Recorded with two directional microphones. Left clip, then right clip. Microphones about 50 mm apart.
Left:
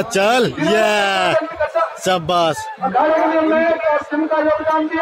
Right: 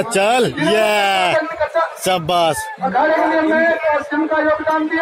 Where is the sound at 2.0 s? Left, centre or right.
Centre.